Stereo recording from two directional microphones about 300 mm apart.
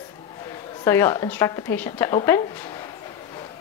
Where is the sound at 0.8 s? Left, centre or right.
Centre.